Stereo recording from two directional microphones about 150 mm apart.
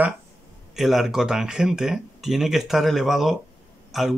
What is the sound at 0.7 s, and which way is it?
A man's voice, centre (ahead or behind).